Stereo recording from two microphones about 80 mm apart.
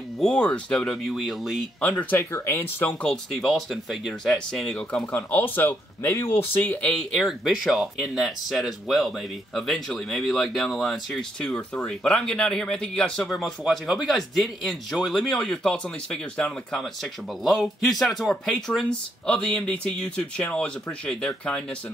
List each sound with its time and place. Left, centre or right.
0.2 s speech: centre
1.0 s speech: centre
1.8 s speech: left
2.3 s speech: left
3.3 s speech: centre
5.1 s speech: left
7.2 s speech: centre